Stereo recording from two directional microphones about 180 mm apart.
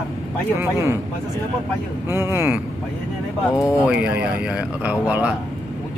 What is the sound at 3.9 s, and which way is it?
Speech, 5° right (ahead or behind).